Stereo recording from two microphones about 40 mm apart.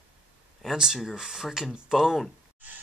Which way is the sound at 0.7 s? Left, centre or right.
Centre.